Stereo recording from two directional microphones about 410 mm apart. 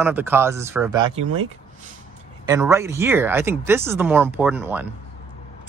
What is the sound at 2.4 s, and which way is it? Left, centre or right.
Speech, centre.